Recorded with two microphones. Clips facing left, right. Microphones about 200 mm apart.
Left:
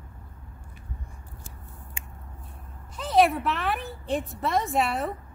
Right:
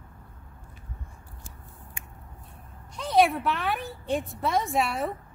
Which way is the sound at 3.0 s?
Centre (ahead or behind).